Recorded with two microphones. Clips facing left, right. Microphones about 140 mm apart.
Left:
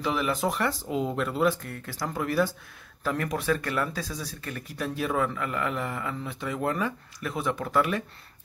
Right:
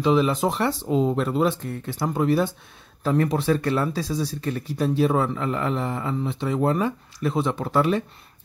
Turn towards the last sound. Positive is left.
turn(degrees=-30)  # may be behind; listen again after turning